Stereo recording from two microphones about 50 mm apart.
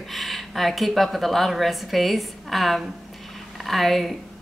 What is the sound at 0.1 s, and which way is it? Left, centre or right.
A woman's voice, centre.